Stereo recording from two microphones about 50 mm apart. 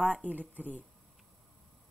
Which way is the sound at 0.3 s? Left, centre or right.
Right.